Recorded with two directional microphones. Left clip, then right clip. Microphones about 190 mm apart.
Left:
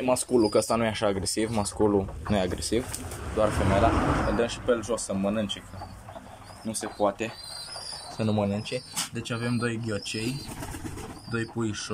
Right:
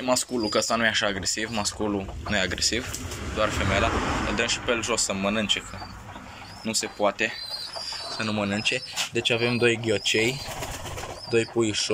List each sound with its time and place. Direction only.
0.4 s speech: 15° left (ahead or behind)
6.6 s speech: 10° left (ahead or behind)
8.5 s speech: centre (ahead or behind)
11.3 s speech: 5° right (ahead or behind)